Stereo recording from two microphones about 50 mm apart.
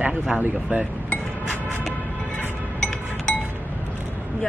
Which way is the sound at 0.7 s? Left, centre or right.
Right.